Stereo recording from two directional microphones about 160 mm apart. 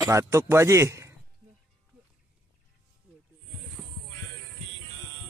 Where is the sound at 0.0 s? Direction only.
20° right (ahead or behind).